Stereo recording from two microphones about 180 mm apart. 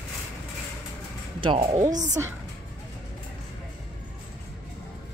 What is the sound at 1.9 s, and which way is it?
Speech, 45° right (ahead or behind).